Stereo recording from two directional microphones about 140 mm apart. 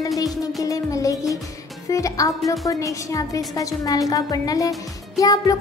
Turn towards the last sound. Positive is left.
turn(degrees=25)  # may be behind; listen again after turning